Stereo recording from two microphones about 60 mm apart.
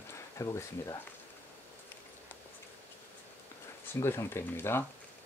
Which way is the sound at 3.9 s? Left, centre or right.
Left.